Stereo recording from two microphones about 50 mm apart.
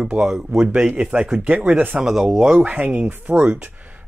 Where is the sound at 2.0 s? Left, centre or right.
Centre.